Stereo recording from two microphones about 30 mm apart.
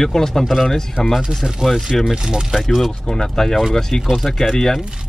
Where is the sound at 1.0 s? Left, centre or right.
Left.